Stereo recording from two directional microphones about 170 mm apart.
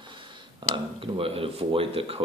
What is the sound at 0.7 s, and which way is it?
Speech, 30° right (ahead or behind).